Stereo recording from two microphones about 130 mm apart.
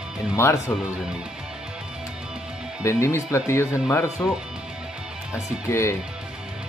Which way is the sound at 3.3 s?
20° left (ahead or behind).